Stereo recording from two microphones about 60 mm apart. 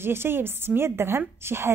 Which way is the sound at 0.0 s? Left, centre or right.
Right.